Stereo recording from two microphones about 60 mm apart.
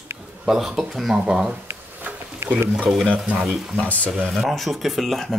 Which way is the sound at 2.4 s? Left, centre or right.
Right.